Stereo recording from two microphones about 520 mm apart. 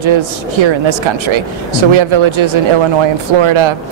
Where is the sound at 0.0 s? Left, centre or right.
Right.